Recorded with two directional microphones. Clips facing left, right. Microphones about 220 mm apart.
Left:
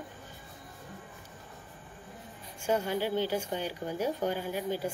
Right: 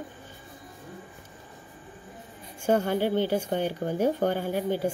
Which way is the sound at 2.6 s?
55° right (ahead or behind).